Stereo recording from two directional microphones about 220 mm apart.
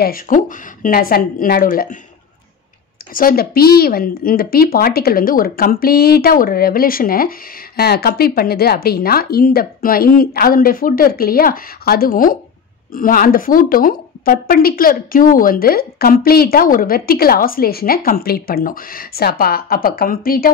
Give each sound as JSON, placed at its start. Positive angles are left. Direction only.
{"t": 0.0, "sound": "a woman's voice", "side_deg": 40}
{"t": 3.1, "sound": "a woman's voice", "side_deg": 40}